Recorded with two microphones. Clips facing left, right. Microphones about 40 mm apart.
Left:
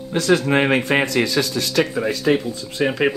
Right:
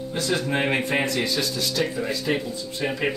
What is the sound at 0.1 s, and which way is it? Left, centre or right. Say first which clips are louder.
Speech: left 8 dB; left.